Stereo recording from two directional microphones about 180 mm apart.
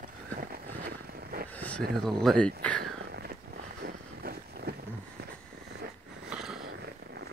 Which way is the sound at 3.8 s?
60° right (ahead or behind).